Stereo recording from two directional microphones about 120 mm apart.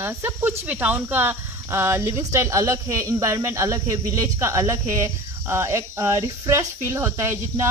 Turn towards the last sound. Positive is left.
turn(degrees=-20)  # may be behind; listen again after turning